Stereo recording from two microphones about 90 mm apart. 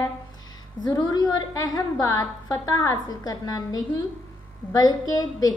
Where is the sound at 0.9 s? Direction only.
45° left (ahead or behind).